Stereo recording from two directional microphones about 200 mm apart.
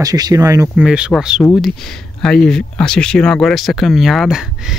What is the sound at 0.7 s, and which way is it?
Speech, 5° right (ahead or behind).